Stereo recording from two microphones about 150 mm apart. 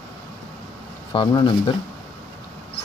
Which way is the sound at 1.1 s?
35° left (ahead or behind).